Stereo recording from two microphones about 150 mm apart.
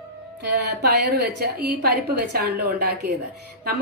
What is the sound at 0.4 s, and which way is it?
A woman's voice, 90° right.